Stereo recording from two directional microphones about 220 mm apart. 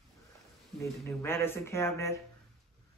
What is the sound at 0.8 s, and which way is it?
Speech, 10° left (ahead or behind).